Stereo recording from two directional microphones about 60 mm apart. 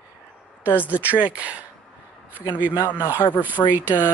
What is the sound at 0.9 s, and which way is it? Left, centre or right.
Speech, right.